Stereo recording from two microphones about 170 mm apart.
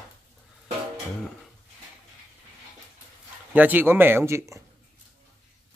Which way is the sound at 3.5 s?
10° right (ahead or behind).